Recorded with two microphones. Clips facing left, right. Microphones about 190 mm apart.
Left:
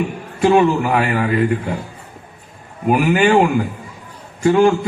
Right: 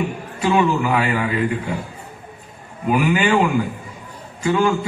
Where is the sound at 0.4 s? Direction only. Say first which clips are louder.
Left 5 dB; 50° left (ahead or behind).